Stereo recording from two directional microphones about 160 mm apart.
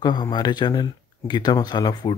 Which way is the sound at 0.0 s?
25° left (ahead or behind).